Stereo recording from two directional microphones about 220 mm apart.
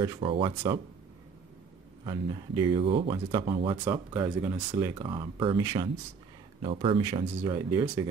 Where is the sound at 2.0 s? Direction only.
20° right (ahead or behind).